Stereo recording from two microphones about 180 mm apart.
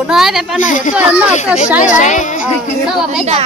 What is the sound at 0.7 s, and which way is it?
Speech, 45° left (ahead or behind).